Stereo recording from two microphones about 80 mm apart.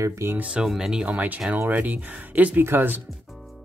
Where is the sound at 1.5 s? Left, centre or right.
Right.